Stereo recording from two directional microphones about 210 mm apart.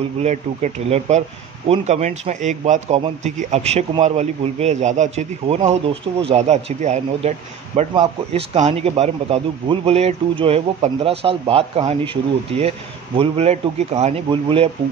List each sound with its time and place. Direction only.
0.2 s a man's voice: 30° right (ahead or behind)